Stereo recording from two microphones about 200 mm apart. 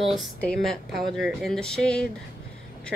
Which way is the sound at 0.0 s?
Centre (ahead or behind).